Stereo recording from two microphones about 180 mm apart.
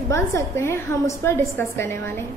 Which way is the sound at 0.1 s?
15° left (ahead or behind).